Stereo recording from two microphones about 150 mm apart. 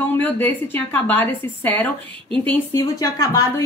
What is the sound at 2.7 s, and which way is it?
Speech, 20° left (ahead or behind).